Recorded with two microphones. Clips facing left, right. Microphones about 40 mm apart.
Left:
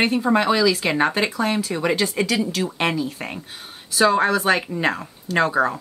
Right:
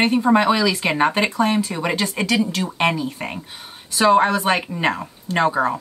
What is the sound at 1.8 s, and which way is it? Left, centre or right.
Speech, centre.